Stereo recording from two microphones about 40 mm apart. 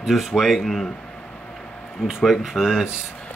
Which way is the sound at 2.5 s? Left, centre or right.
Centre.